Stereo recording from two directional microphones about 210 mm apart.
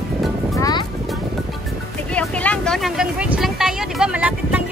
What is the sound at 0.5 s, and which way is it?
Music, 20° left (ahead or behind).